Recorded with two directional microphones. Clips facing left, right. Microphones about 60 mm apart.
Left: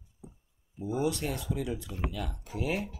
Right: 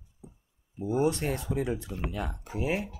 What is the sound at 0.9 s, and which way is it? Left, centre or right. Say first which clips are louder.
Speech: right 4 dB; right.